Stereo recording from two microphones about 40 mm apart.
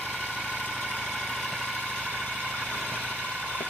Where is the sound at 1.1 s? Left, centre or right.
Centre.